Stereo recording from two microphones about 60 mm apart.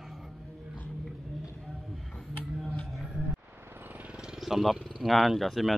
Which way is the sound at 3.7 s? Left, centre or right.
Right.